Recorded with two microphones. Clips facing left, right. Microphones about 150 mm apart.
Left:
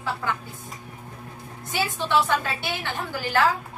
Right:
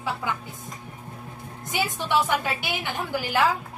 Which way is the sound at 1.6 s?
15° right (ahead or behind).